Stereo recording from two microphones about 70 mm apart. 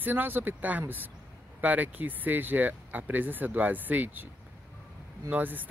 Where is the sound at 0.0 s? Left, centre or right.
Right.